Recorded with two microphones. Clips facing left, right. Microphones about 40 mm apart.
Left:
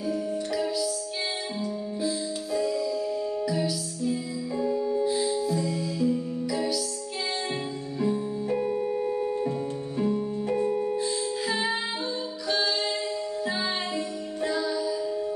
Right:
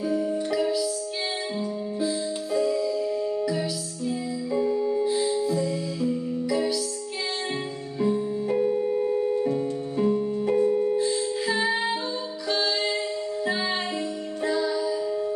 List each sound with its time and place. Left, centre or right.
0.0 s music: centre
8.0 s music: centre
8.6 s music: centre
9.9 s music: centre
10.7 s music: centre
12.4 s music: centre